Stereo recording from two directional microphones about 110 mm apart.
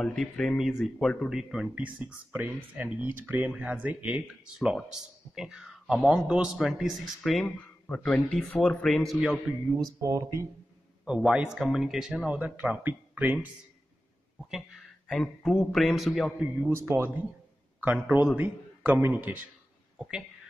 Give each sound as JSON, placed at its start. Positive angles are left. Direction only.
{"t": 0.0, "sound": "speech", "side_deg": 5}
{"t": 4.1, "sound": "speech", "side_deg": -5}
{"t": 7.4, "sound": "speech", "side_deg": 10}
{"t": 9.8, "sound": "speech", "side_deg": -30}
{"t": 11.1, "sound": "speech", "side_deg": -10}
{"t": 12.3, "sound": "speech", "side_deg": -15}
{"t": 15.0, "sound": "a man's voice", "side_deg": 0}
{"t": 16.3, "sound": "speech", "side_deg": -20}